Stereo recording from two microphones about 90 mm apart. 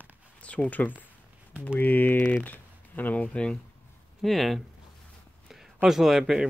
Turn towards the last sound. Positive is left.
turn(degrees=-5)  # may be behind; listen again after turning